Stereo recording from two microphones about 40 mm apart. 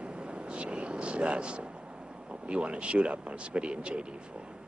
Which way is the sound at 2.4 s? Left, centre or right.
Right.